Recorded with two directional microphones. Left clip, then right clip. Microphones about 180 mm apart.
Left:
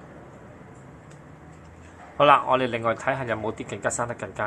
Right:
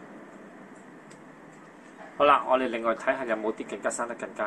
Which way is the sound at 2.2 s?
40° left (ahead or behind).